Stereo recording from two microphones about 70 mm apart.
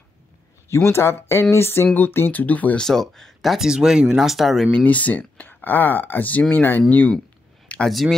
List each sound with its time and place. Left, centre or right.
0.7 s speech: left
2.8 s speech: centre
3.5 s speech: centre
4.7 s speech: left
7.6 s a sound: centre